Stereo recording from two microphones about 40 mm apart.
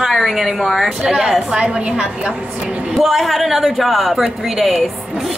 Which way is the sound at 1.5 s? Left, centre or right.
Right.